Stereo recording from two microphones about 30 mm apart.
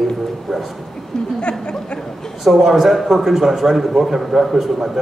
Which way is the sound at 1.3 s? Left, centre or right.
Left.